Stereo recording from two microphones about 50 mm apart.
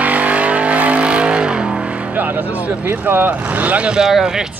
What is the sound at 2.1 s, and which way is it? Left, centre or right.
Vehicle, right.